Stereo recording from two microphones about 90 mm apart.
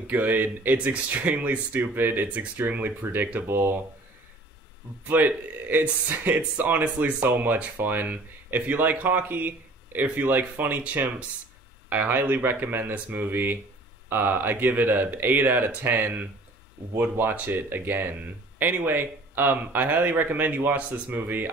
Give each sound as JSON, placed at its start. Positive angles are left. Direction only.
{"t": 0.0, "sound": "speech", "side_deg": -20}
{"t": 5.0, "sound": "speech", "side_deg": -20}